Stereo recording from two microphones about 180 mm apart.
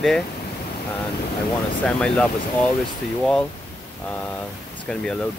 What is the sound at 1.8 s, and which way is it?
Speech, 5° left (ahead or behind).